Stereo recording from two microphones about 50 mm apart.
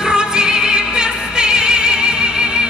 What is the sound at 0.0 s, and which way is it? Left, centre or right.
Music, centre.